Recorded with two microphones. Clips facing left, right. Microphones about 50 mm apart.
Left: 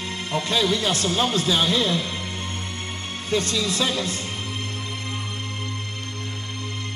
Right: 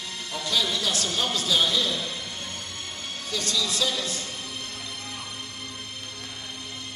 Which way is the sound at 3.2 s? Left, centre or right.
Left.